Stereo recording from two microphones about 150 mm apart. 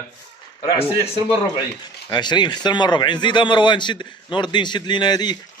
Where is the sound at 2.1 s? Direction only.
30° left (ahead or behind).